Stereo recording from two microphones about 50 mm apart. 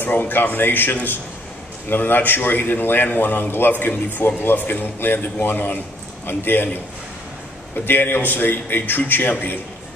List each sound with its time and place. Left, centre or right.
0.0 s a man's voice: left